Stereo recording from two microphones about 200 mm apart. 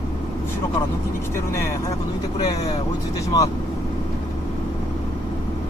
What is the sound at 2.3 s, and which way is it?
Speech, 30° left (ahead or behind).